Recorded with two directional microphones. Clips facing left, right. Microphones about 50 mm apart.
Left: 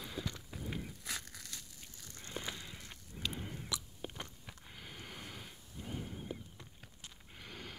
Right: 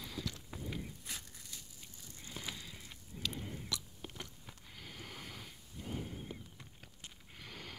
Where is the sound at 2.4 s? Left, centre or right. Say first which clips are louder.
Left 3 dB; left.